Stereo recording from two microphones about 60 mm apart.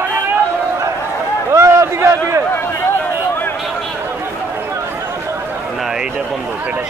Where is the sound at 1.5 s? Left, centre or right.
Right.